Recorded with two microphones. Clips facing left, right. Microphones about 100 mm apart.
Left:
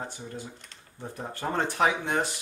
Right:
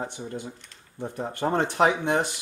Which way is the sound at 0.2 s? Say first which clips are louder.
Right 5 dB; 20° right (ahead or behind).